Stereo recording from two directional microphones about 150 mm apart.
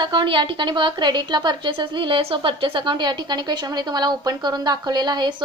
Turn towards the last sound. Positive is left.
turn(degrees=-30)  # may be behind; listen again after turning